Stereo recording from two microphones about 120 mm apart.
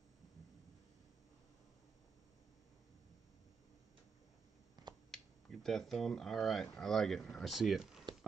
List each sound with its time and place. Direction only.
4.8 s finger snapping: 35° right (ahead or behind)
5.1 s speech: 5° left (ahead or behind)